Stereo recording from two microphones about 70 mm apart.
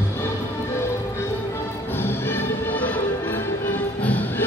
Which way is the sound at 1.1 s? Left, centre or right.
Left.